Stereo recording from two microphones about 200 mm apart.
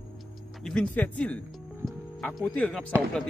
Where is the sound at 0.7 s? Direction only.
5° left (ahead or behind).